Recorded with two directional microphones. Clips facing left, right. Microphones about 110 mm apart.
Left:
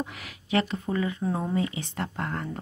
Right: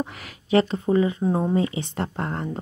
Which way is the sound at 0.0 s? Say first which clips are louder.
Right 4 dB; 35° right (ahead or behind).